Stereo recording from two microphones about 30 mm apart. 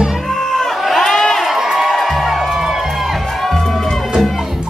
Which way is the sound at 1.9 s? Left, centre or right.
Centre.